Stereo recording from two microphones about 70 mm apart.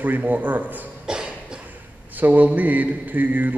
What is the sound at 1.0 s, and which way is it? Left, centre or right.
Cough, centre.